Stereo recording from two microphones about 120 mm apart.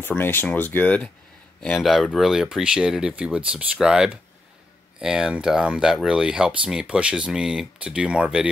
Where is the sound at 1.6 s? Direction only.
5° left (ahead or behind).